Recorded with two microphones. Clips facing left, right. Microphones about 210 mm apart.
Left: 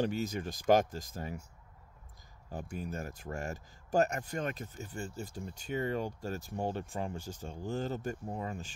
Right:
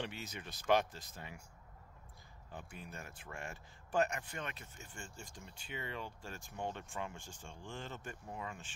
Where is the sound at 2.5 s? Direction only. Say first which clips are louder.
Left 10 dB; 45° left (ahead or behind).